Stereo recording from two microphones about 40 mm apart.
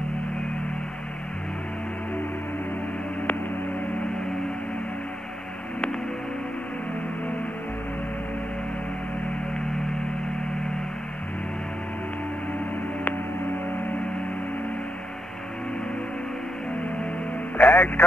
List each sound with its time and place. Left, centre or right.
17.6 s music: left